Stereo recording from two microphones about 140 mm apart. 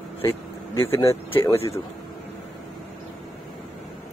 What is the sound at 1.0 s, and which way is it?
Speech, 20° left (ahead or behind).